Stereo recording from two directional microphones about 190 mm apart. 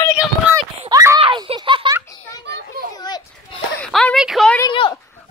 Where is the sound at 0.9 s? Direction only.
15° right (ahead or behind).